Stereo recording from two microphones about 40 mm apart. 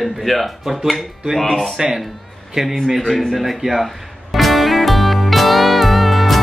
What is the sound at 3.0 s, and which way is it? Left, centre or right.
Music, centre.